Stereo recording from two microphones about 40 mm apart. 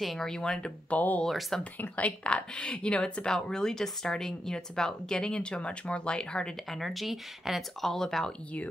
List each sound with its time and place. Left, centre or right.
0.0 s speech: centre
0.3 s speech: centre
0.8 s speech: left
2.2 s speech: left
6.7 s speech: centre
7.8 s speech: centre